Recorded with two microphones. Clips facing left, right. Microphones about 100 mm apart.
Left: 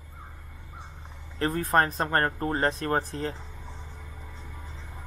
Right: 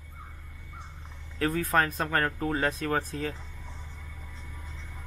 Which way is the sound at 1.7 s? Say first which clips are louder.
Left 3 dB; 25° left (ahead or behind).